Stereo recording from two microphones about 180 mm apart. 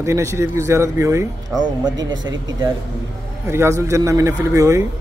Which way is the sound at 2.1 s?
90° right.